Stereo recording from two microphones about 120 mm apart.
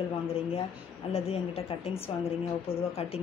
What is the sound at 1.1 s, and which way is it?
Speech, 55° left (ahead or behind).